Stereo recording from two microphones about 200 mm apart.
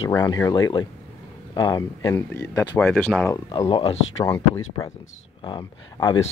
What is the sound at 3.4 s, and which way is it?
Speech, 25° left (ahead or behind).